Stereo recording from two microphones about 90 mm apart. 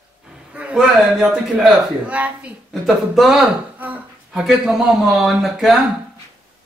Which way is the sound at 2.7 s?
5° right (ahead or behind).